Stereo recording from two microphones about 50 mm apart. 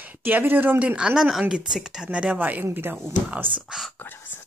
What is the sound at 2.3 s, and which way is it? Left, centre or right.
Speech, right.